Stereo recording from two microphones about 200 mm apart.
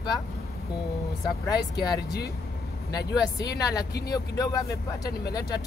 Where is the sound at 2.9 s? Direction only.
20° left (ahead or behind).